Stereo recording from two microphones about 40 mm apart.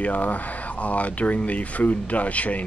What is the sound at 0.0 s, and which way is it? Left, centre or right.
Speech, left.